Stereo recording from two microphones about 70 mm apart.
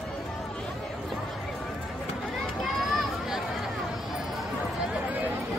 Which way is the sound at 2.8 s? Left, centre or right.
Centre.